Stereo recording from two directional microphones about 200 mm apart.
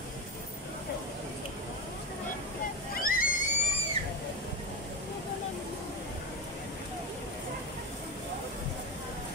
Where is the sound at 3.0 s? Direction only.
45° left (ahead or behind).